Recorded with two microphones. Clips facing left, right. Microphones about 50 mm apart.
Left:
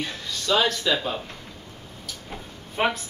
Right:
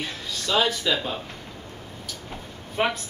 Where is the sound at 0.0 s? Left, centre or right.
Centre.